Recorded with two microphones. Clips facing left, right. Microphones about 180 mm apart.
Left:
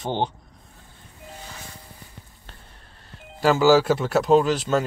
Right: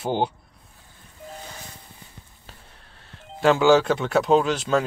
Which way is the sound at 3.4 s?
Centre (ahead or behind).